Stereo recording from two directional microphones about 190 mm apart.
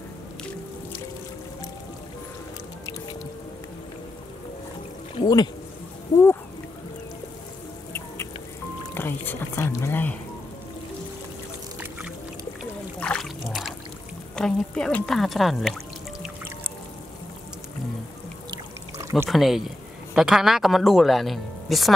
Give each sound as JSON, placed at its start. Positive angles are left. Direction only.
{"t": 5.2, "sound": "speech", "side_deg": 20}
{"t": 8.9, "sound": "music", "side_deg": 10}
{"t": 13.0, "sound": "a sound", "side_deg": 5}
{"t": 13.5, "sound": "music", "side_deg": 0}
{"t": 14.3, "sound": "speech", "side_deg": 5}
{"t": 18.5, "sound": "pour", "side_deg": -15}
{"t": 19.2, "sound": "speech", "side_deg": 0}